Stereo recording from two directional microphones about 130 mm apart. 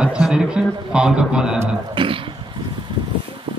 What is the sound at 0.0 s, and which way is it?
A man's voice, 5° right (ahead or behind).